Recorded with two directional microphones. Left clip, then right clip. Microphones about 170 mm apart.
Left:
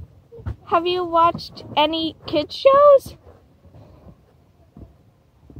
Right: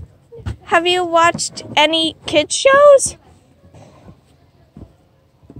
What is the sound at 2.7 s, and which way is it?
Speech, 25° left (ahead or behind).